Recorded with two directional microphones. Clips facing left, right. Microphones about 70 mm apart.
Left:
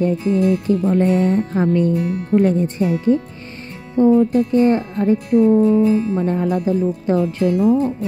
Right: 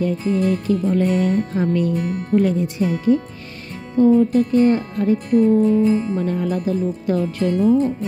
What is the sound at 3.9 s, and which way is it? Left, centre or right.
Speech, left.